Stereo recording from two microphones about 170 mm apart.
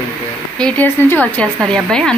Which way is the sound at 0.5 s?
5° left (ahead or behind).